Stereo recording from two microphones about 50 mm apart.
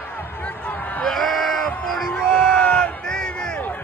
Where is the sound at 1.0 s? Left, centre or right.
Centre.